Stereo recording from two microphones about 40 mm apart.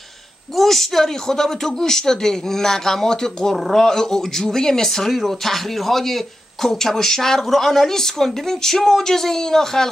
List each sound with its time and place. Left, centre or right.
0.6 s speech: centre
3.5 s speech: centre